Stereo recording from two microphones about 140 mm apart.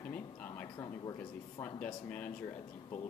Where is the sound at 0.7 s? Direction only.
30° left (ahead or behind).